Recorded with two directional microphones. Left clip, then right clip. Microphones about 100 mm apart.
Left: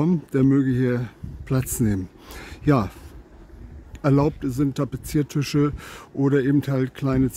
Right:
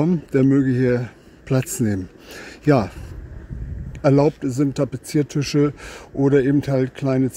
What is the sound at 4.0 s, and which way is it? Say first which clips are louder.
Speech: right 5 dB; 20° left (ahead or behind).